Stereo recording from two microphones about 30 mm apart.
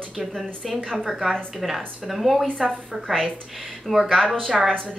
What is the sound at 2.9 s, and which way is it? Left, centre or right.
Speech, right.